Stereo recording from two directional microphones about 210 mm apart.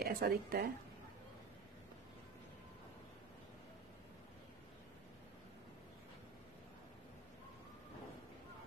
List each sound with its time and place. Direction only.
0.0 s a woman's voice: 50° right (ahead or behind)